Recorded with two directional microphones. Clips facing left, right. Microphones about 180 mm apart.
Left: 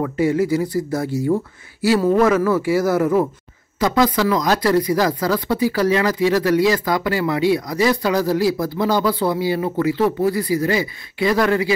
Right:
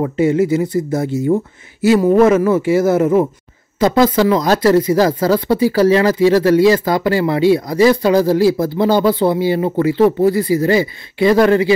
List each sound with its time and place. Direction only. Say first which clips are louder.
0.0 s speech: right 4 dB; 25° right (ahead or behind)